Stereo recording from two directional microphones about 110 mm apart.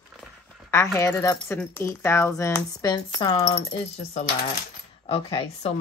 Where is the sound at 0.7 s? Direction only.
25° left (ahead or behind).